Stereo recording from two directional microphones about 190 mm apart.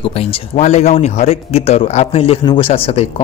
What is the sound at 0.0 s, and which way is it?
Speech, 30° left (ahead or behind).